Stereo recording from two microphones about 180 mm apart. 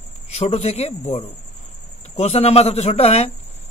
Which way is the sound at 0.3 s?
35° left (ahead or behind).